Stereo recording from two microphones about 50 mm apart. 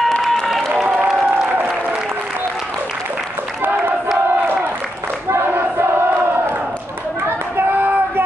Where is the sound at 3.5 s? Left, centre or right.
Right.